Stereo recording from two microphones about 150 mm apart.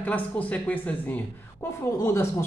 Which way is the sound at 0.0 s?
10° left (ahead or behind).